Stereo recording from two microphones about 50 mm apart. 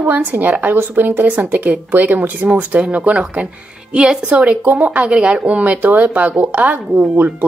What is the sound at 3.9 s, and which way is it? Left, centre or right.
Speech, centre.